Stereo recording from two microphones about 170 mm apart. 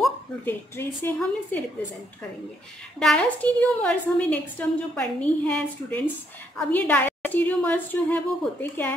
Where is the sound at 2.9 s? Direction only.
5° left (ahead or behind).